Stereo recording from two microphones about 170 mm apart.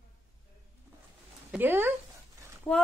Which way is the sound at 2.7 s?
15° left (ahead or behind).